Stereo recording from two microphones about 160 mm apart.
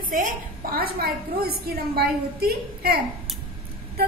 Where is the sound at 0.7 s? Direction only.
70° right (ahead or behind).